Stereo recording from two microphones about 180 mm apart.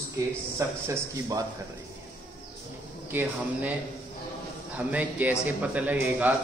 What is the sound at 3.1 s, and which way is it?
Speech, 10° right (ahead or behind).